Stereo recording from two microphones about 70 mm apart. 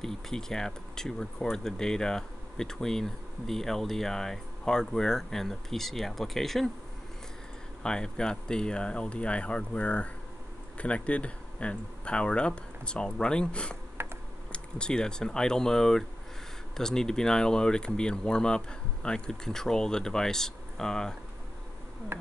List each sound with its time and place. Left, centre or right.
0.0 s speech: centre
7.8 s speech: centre
14.0 s computer keyboard: right
14.5 s speech: centre